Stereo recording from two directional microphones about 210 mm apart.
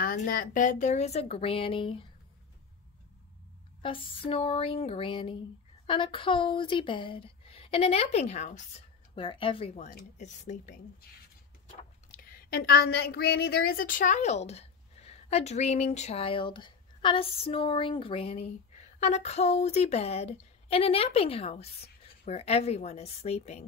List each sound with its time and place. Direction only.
0.0 s a woman's voice: 45° left (ahead or behind); by 2.0 s 25° left (ahead or behind)
3.8 s speech: 25° left (ahead or behind)
9.8 s a woman's voice: 40° left (ahead or behind)